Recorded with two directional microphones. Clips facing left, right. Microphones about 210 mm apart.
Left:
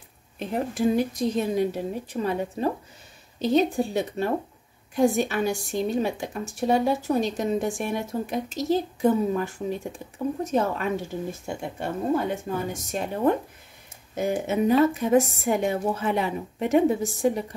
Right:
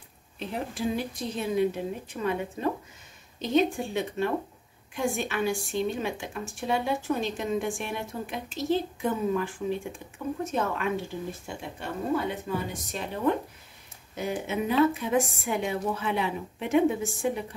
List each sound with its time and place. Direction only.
0.4 s a woman's voice: 45° left (ahead or behind)